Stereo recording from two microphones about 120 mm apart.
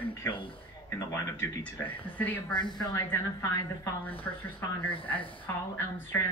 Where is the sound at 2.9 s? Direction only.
25° left (ahead or behind).